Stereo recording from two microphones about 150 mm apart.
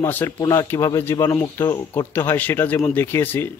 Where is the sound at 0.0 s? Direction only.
15° left (ahead or behind).